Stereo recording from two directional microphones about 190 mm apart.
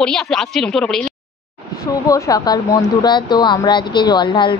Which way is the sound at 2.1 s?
20° left (ahead or behind).